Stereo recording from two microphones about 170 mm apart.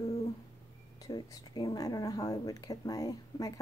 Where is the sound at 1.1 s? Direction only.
25° left (ahead or behind).